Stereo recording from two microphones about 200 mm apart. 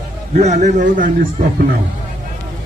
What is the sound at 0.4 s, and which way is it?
Speech, 35° right (ahead or behind).